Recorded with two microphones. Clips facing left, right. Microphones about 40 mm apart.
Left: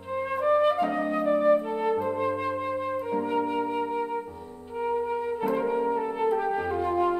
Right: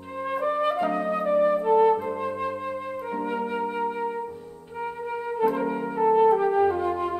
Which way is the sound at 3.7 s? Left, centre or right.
Centre.